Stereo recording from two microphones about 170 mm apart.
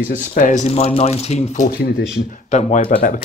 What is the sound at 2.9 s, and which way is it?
Speech, 55° left (ahead or behind).